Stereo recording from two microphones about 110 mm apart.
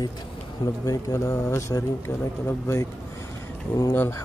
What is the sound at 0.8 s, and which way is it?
Speech, 30° left (ahead or behind).